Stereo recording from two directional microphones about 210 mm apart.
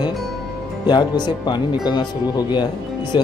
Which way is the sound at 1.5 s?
20° left (ahead or behind).